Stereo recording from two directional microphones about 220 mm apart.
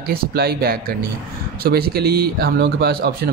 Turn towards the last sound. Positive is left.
turn(degrees=-45)  # may be behind; listen again after turning